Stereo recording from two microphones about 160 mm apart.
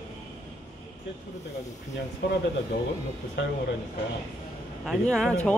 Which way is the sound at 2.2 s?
90° left.